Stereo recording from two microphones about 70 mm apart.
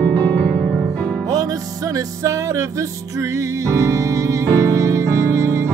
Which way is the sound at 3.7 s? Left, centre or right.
Right.